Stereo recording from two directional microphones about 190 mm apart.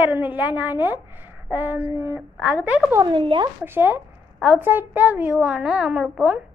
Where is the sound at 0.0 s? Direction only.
10° right (ahead or behind).